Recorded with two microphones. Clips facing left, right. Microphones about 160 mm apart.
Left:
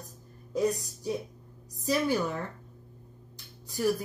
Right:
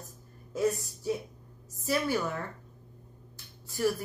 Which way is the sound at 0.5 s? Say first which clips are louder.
Left 1 dB; 15° left (ahead or behind).